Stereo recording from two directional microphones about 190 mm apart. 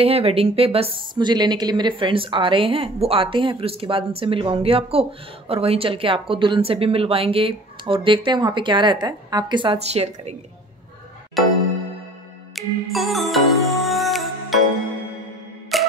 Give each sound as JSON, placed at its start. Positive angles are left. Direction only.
{"t": 0.0, "sound": "a woman's voice", "side_deg": -30}
{"t": 11.4, "sound": "music", "side_deg": 0}
{"t": 12.5, "sound": "music", "side_deg": 0}
{"t": 15.7, "sound": "tick-tock", "side_deg": 0}